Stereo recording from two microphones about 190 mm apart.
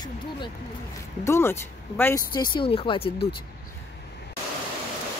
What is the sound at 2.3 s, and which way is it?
Speech, 25° left (ahead or behind).